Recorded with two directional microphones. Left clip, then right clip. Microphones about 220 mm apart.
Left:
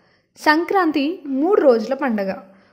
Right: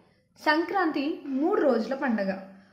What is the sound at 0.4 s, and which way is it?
A woman's voice, 45° left (ahead or behind).